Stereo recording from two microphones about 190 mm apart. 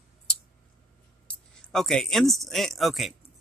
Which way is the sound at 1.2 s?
5° left (ahead or behind).